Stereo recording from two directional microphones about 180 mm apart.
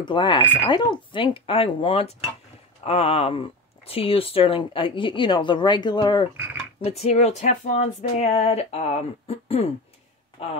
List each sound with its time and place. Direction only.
0.0 s speech: 25° left (ahead or behind)
6.8 s speech: 35° left (ahead or behind)